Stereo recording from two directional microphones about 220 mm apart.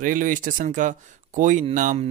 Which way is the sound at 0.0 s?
35° right (ahead or behind).